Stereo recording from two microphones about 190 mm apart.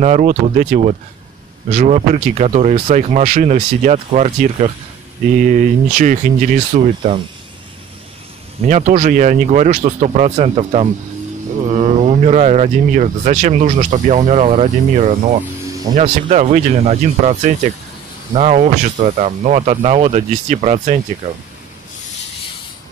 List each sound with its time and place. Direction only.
0.0 s speech: 40° right (ahead or behind)
8.6 s speech: 40° right (ahead or behind)